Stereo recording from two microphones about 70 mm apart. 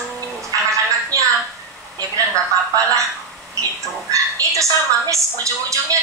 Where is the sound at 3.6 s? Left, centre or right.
Right.